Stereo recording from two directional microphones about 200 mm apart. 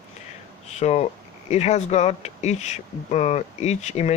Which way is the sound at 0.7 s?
35° left (ahead or behind).